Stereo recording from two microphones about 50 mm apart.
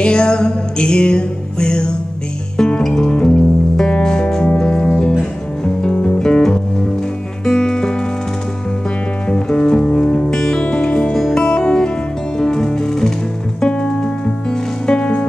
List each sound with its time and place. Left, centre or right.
0.0 s music: centre
9.3 s music: left